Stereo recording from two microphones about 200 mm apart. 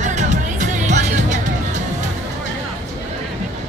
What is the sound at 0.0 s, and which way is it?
Music, 35° right (ahead or behind).